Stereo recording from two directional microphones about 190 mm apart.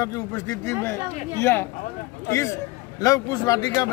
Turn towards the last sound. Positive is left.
turn(degrees=20)  # may be behind; listen again after turning